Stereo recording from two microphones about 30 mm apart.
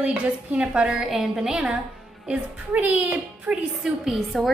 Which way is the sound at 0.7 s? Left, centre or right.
Right.